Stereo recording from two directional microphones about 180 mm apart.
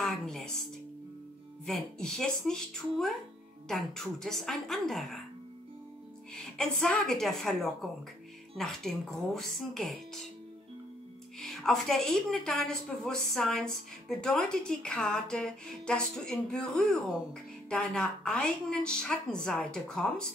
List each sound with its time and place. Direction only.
0.0 s speech: centre (ahead or behind)
1.7 s a woman's voice: 5° left (ahead or behind)
6.3 s a woman's voice: 5° left (ahead or behind)
11.4 s a woman's voice: centre (ahead or behind)